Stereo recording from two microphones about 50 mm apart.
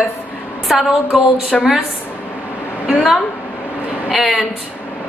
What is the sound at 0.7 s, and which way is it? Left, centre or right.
Speech, centre.